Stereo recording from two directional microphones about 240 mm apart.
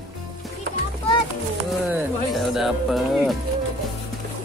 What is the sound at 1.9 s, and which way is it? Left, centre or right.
Speech, centre.